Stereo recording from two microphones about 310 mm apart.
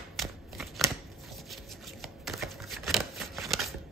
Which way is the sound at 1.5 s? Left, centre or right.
Centre.